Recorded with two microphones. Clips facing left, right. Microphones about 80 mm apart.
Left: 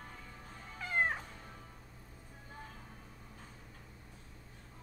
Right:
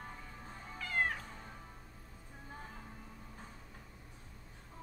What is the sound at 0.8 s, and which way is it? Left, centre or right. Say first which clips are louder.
Cat: left 2 dB; left.